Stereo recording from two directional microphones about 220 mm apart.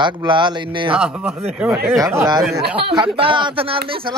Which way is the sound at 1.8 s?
15° right (ahead or behind).